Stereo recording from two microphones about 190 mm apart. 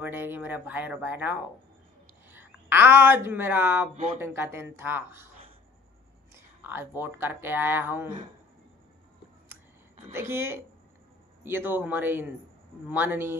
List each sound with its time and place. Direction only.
0.0 s speech: 10° right (ahead or behind)
2.3 s a woman's voice: 10° right (ahead or behind)
6.3 s a sound: 10° right (ahead or behind)
7.0 s speech: 10° right (ahead or behind)
10.1 s speech: 15° right (ahead or behind)